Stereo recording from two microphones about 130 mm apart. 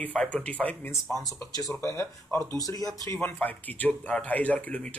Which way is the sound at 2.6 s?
25° left (ahead or behind).